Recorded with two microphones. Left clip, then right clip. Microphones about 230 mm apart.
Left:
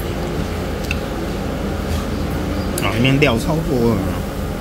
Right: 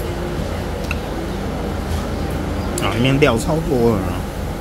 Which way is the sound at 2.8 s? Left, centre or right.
Centre.